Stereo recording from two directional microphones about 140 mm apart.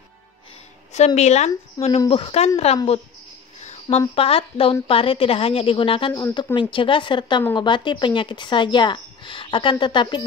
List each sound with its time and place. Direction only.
0.9 s speech: 55° left (ahead or behind)
2.0 s speech: 40° left (ahead or behind)
3.6 s a sound: 55° left (ahead or behind)
4.1 s speech: 40° left (ahead or behind)